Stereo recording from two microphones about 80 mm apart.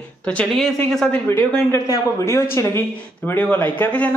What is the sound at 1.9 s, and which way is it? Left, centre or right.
Speech, left.